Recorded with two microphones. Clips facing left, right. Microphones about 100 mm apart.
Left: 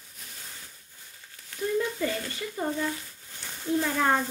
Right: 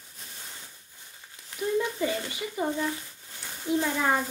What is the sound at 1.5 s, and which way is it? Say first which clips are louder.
Speech: even; 20° right (ahead or behind).